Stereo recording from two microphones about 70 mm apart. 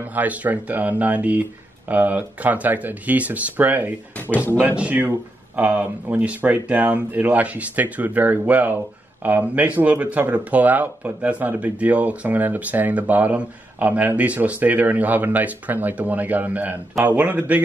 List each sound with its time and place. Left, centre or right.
0.0 s speech: right